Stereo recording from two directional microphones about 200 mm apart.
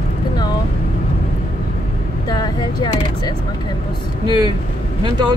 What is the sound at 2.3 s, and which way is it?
Speech, 20° left (ahead or behind).